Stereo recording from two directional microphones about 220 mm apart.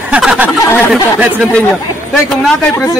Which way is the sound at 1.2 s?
5° right (ahead or behind).